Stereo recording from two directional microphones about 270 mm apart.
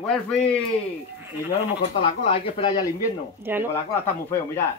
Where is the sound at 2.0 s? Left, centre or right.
Centre.